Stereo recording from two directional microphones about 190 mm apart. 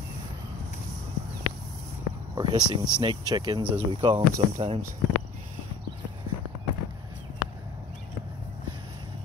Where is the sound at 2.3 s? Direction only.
25° right (ahead or behind).